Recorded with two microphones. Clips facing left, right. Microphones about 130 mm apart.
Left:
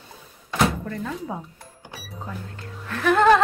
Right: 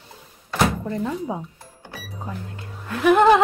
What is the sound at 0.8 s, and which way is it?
Speech, 20° right (ahead or behind).